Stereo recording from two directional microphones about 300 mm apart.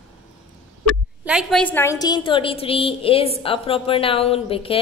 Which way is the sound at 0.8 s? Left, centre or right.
Centre.